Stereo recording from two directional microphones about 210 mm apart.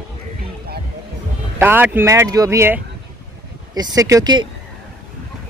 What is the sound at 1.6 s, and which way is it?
Speech, 10° right (ahead or behind).